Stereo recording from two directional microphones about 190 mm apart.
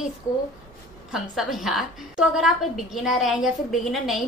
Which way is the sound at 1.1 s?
Centre (ahead or behind).